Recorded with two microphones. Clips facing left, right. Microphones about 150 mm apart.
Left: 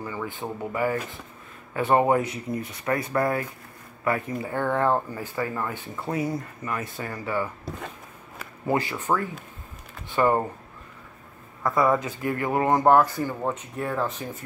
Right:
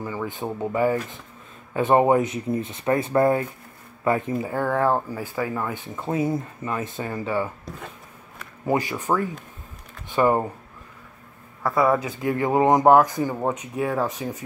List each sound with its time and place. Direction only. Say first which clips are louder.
0.0 s speech: right 3 dB; 15° right (ahead or behind)
4.5 s speech: right 1 dB; 5° right (ahead or behind)
5.9 s speech: right 4 dB; 25° right (ahead or behind)
8.6 s speech: right 2 dB; 15° right (ahead or behind)
11.6 s speech: right 2 dB; 5° right (ahead or behind)
12.2 s speech: right 4 dB; 20° right (ahead or behind)